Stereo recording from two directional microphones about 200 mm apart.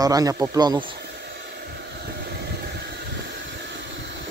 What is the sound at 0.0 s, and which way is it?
Speech, 20° right (ahead or behind).